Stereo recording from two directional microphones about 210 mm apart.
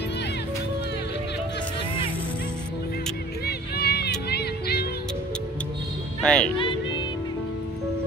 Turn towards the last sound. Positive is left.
turn(degrees=25)  # may be behind; listen again after turning